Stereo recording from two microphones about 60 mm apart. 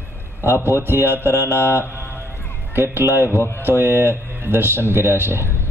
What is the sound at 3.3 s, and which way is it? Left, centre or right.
Speech, left.